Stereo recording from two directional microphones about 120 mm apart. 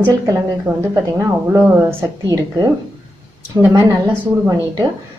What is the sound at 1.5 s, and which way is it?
Speech, 20° right (ahead or behind).